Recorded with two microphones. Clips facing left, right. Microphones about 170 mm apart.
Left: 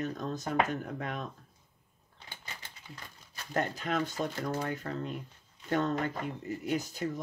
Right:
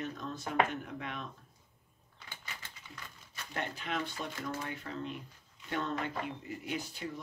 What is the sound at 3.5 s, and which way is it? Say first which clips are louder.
Speech: left 6 dB; 40° left (ahead or behind).